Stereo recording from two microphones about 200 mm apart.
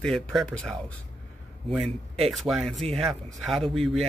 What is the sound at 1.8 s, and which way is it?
Speech, 30° right (ahead or behind).